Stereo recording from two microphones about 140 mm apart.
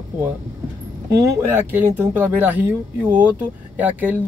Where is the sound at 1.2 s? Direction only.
20° right (ahead or behind).